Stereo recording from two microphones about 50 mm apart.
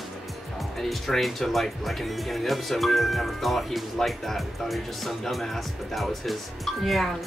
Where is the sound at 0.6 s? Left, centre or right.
Centre.